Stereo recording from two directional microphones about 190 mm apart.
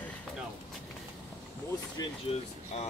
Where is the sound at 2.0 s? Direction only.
30° left (ahead or behind).